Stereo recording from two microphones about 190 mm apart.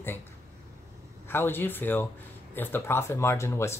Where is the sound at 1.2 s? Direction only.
10° left (ahead or behind).